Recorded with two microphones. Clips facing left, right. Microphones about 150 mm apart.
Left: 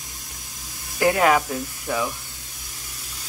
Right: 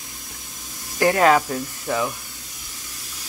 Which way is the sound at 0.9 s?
10° left (ahead or behind).